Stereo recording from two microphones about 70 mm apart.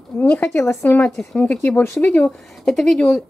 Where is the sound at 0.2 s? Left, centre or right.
Left.